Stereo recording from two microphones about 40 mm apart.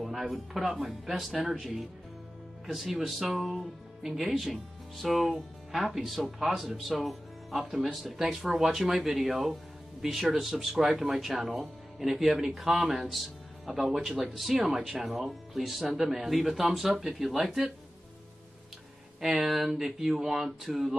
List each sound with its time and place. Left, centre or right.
0.0 s speech: centre
10.6 s speech: centre
19.2 s speech: centre